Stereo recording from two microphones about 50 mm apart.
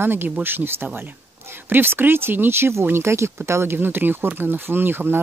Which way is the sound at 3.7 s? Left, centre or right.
Right.